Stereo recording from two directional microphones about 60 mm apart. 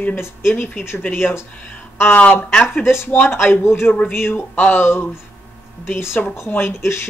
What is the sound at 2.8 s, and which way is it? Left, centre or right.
Speech, left.